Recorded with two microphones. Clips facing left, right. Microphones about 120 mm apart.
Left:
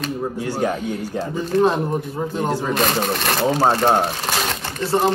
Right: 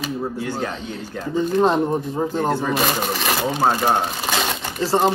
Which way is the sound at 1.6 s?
30° right (ahead or behind).